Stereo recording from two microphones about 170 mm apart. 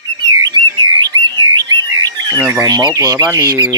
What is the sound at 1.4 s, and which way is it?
Bird, 25° right (ahead or behind).